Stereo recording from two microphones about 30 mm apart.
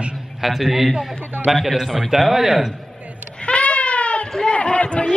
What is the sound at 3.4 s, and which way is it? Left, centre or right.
Baby cry, left.